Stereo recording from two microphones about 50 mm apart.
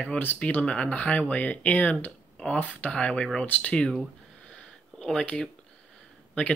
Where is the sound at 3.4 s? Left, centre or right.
Left.